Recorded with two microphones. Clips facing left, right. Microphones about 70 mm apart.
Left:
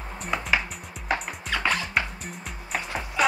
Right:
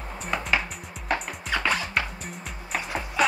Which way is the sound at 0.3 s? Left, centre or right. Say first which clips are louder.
Left 1 dB; centre.